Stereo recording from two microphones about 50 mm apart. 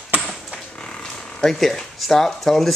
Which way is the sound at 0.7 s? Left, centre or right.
Centre.